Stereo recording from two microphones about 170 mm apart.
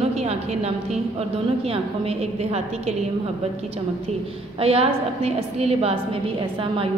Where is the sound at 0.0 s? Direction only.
40° right (ahead or behind).